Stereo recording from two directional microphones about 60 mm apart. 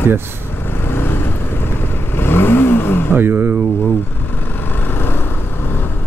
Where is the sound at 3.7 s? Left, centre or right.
Left.